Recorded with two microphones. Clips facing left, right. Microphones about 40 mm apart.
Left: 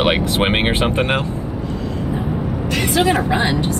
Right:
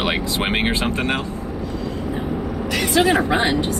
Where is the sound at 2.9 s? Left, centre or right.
Right.